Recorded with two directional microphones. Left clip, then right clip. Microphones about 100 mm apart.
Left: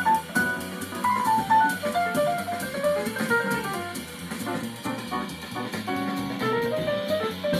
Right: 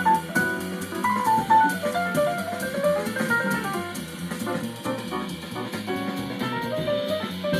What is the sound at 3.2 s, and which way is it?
Music, 35° right (ahead or behind).